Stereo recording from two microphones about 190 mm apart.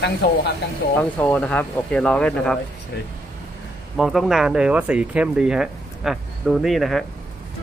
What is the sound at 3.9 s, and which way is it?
A man's voice, centre (ahead or behind).